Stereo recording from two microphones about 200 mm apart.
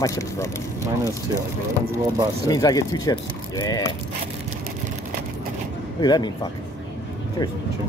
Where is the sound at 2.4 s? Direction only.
20° left (ahead or behind).